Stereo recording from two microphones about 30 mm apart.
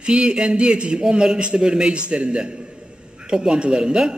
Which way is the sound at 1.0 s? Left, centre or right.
Right.